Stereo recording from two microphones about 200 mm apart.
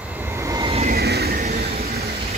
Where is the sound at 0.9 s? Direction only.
50° right (ahead or behind).